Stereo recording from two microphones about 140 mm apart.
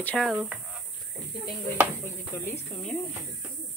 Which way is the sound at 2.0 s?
15° left (ahead or behind).